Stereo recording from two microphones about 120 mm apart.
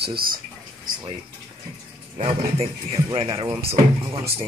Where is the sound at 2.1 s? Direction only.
55° right (ahead or behind).